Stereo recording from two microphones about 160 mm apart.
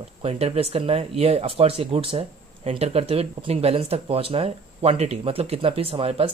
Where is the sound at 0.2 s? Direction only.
40° right (ahead or behind).